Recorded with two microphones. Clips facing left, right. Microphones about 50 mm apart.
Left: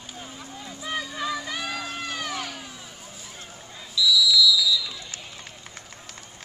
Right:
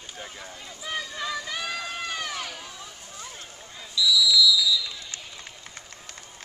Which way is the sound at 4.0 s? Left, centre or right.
Centre.